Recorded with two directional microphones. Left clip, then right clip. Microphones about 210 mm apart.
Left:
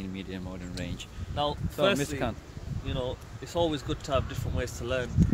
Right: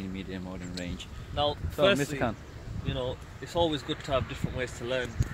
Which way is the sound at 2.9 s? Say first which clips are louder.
Even; 10° left (ahead or behind).